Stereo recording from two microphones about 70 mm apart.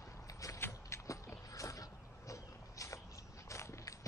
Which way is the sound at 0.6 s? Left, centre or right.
Left.